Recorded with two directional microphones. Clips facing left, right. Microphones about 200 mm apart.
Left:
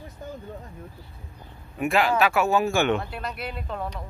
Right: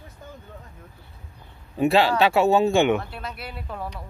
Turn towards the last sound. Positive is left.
turn(degrees=-5)  # may be behind; listen again after turning